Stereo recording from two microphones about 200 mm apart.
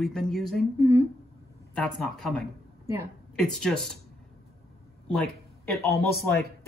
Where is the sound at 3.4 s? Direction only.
5° left (ahead or behind).